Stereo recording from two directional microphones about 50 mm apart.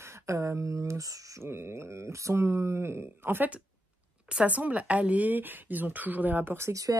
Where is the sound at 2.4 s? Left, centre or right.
Right.